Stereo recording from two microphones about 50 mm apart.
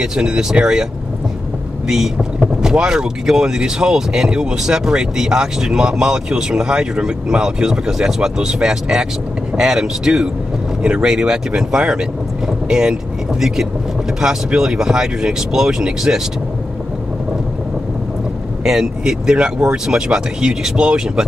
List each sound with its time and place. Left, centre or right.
0.0 s speech: centre
2.4 s speech: centre
18.6 s speech: centre